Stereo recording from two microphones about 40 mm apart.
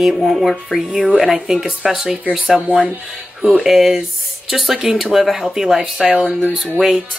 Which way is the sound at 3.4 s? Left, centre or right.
Centre.